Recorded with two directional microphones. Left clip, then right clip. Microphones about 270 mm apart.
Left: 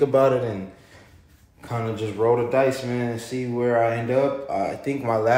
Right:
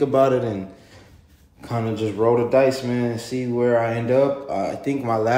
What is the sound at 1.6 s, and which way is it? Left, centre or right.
Speech, centre.